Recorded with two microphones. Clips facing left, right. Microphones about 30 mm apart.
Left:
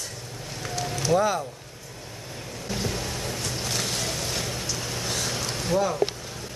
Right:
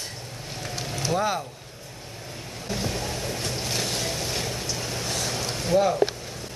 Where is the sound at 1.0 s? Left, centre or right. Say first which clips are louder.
Left 3 dB; centre.